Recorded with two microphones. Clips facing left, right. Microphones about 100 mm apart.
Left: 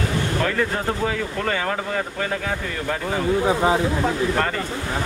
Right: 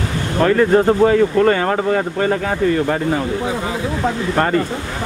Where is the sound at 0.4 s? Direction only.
45° right (ahead or behind).